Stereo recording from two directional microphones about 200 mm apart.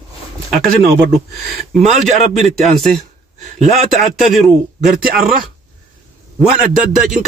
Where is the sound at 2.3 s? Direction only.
Centre (ahead or behind).